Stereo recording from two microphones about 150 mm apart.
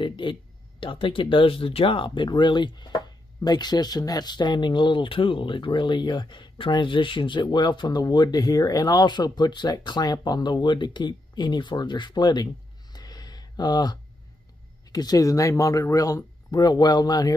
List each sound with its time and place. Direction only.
0.0 s speech: 35° left (ahead or behind)
12.9 s a sound: 25° left (ahead or behind)
14.9 s speech: 25° left (ahead or behind)